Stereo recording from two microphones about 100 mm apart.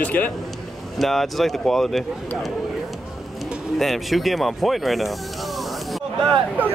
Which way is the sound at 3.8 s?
Centre (ahead or behind).